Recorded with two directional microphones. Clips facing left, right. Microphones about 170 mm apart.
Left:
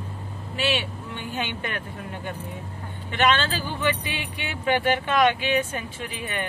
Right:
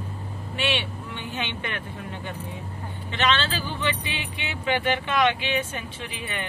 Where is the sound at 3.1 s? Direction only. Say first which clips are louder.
Left 2 dB; 50° left (ahead or behind).